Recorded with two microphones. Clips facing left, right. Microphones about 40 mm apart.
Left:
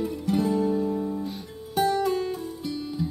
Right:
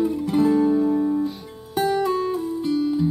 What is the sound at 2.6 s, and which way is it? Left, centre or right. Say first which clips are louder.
Music: right 10 dB; centre.